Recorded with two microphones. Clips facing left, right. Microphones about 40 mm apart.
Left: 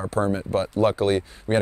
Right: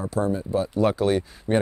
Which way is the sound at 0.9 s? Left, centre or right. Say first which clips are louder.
Even; left.